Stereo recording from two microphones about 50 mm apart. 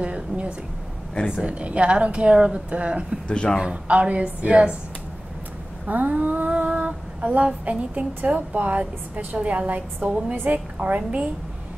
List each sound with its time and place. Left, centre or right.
0.0 s female singing: right
3.3 s a man's voice: left
3.8 s female singing: right
5.9 s female singing: right
10.3 s a woman's voice: right
11.0 s female singing: right